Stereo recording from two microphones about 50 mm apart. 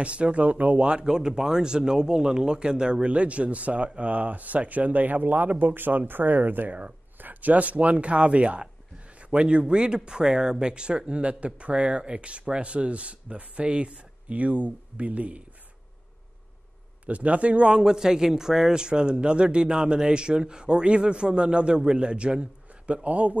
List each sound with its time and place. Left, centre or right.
0.0 s speech: right
17.0 s speech: right